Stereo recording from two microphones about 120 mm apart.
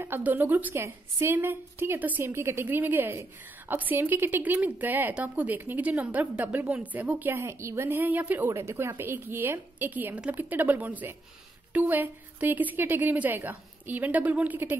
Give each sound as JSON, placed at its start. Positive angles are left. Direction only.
{"t": 0.0, "sound": "speech", "side_deg": -15}